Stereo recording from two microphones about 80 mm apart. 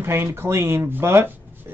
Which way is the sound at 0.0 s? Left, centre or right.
Right.